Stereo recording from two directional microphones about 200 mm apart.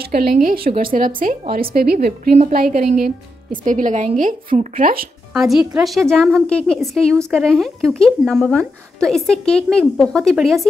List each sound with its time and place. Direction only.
0.0 s a woman's voice: 45° right (ahead or behind)
5.3 s speech: centre (ahead or behind)